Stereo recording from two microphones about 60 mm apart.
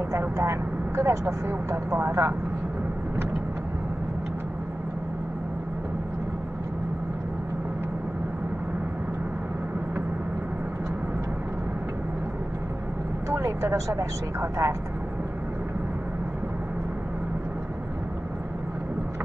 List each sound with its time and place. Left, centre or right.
0.1 s speech: right
13.3 s speech: right